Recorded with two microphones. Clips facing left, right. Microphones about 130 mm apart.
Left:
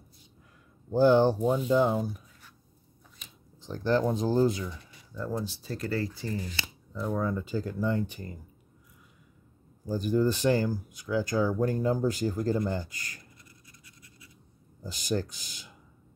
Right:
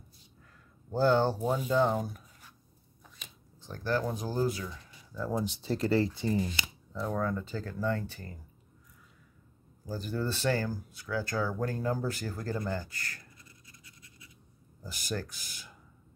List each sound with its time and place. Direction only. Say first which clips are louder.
0.9 s speech: left 5 dB; 15° left (ahead or behind)
1.4 s speech: left 4 dB; centre (ahead or behind)
1.7 s speech: even; 10° left (ahead or behind)
3.6 s speech: left 5 dB; 20° left (ahead or behind)
5.3 s speech: right 3 dB; 20° right (ahead or behind)
6.9 s speech: left 2 dB; centre (ahead or behind)
9.8 s speech: left 8 dB; 15° left (ahead or behind)
13.5 s scratch: left 1 dB; 25° right (ahead or behind)
14.8 s speech: left 6 dB; 20° left (ahead or behind)